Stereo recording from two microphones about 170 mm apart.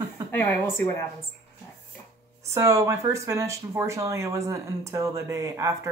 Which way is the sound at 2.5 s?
15° right (ahead or behind).